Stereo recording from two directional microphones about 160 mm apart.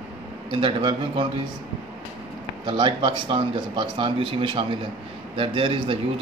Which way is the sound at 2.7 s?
30° right (ahead or behind).